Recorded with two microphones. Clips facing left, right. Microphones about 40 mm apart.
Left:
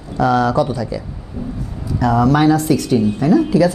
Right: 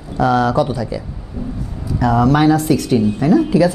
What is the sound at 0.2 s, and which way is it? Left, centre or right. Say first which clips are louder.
Speech: even; centre.